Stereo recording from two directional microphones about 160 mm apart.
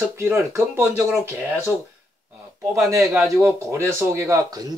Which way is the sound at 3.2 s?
20° right (ahead or behind).